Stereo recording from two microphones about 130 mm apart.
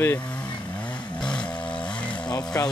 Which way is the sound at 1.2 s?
5° left (ahead or behind).